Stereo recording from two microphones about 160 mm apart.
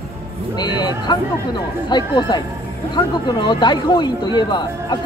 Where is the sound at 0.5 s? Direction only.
25° left (ahead or behind).